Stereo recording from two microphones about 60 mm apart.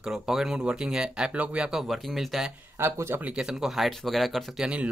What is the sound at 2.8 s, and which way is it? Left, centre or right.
Speech, right.